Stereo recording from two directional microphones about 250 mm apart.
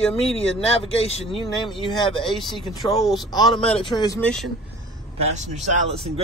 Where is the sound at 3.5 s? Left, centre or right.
Left.